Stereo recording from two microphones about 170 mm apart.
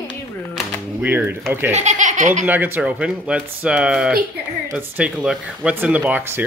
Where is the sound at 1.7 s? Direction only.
45° right (ahead or behind).